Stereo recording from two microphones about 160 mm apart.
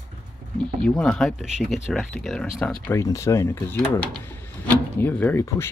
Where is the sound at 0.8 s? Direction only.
5° left (ahead or behind).